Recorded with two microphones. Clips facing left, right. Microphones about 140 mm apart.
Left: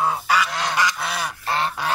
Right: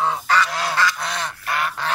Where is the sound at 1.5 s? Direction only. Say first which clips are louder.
Left 1 dB; 30° left (ahead or behind).